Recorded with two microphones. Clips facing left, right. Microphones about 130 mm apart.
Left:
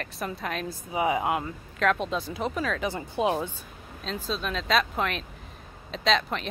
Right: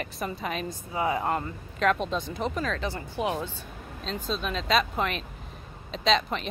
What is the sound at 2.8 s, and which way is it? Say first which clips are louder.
Speech: left 3 dB; 20° left (ahead or behind).